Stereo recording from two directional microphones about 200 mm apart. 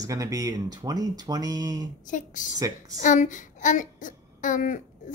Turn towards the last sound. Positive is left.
turn(degrees=40)  # may be behind; listen again after turning